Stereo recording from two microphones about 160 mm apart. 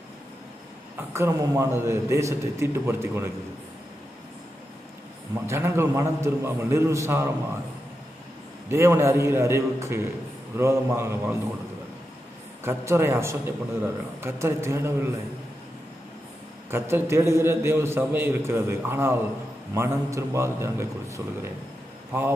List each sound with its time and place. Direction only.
0.9 s a man's voice: 15° right (ahead or behind)
5.3 s a man's voice: 15° right (ahead or behind)
8.6 s a man's voice: 15° right (ahead or behind)
12.6 s a man's voice: 15° right (ahead or behind)
16.7 s a man's voice: 15° right (ahead or behind)